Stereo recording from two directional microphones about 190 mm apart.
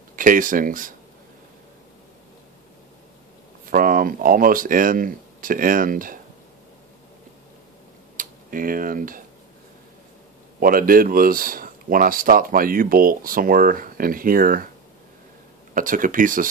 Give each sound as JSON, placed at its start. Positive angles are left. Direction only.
{"t": 0.1, "sound": "speech", "side_deg": -45}
{"t": 3.7, "sound": "speech", "side_deg": -45}
{"t": 8.2, "sound": "speech", "side_deg": -45}
{"t": 10.6, "sound": "speech", "side_deg": -50}
{"t": 15.7, "sound": "speech", "side_deg": -45}